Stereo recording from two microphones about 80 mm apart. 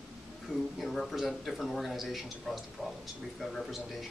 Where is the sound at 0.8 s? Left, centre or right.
Centre.